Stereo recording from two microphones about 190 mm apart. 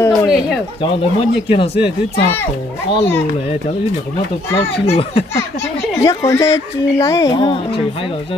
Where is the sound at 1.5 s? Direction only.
30° left (ahead or behind).